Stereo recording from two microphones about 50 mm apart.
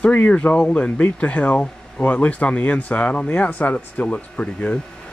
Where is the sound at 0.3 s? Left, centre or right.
Left.